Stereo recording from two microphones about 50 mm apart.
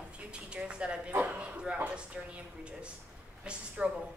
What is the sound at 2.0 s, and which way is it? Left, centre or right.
A man's voice, right.